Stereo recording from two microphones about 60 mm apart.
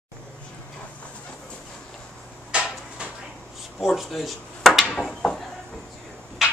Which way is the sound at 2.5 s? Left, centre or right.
Centre.